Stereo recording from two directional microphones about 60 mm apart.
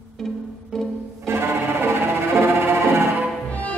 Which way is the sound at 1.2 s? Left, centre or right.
Right.